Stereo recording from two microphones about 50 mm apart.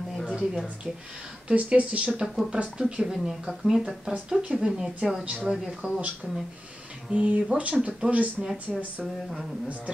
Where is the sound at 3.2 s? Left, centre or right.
Centre.